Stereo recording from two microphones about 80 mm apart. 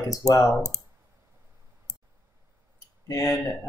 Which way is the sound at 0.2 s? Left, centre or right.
Left.